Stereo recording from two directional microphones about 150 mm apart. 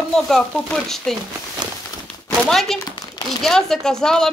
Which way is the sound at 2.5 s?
5° left (ahead or behind).